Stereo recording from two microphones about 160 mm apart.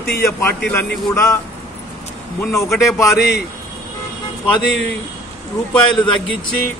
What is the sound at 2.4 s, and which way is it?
Speech, 15° left (ahead or behind).